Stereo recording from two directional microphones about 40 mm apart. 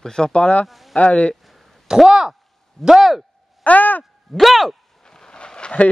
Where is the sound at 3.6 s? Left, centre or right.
Left.